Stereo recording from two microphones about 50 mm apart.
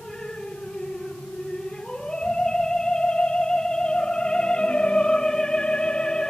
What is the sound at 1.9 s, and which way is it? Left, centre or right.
Theremin, centre.